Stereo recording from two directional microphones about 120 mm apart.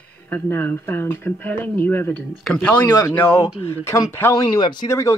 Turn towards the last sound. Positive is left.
turn(degrees=25)  # may be behind; listen again after turning